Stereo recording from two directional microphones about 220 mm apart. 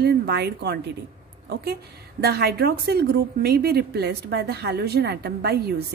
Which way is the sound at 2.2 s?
45° right (ahead or behind).